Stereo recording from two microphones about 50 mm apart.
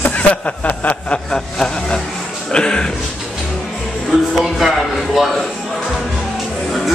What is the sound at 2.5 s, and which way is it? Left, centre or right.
Music, centre.